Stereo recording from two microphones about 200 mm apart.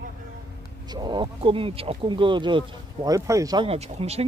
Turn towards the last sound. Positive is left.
turn(degrees=-30)  # may be behind; listen again after turning